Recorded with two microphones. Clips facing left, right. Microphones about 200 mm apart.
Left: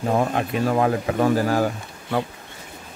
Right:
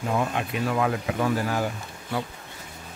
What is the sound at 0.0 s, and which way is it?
Speech, 40° left (ahead or behind).